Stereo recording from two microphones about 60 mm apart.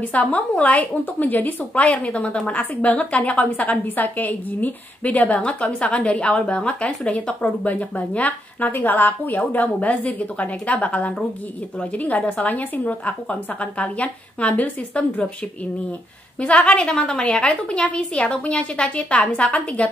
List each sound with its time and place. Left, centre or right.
0.0 s speech: left
16.3 s a woman's voice: centre